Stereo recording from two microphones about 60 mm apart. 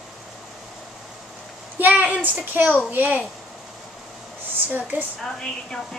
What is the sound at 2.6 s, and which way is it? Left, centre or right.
Speech, right.